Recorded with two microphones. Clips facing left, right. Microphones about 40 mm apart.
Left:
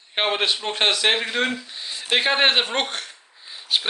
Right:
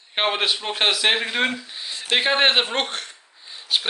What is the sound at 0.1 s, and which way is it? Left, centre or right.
Speech, centre.